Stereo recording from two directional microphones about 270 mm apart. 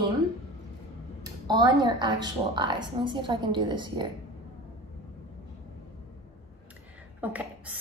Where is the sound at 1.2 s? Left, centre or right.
Centre.